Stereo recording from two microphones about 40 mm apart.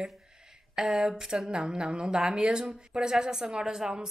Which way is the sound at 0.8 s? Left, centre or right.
Centre.